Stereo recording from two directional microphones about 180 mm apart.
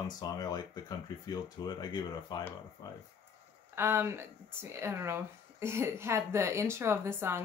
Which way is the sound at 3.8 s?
15° right (ahead or behind).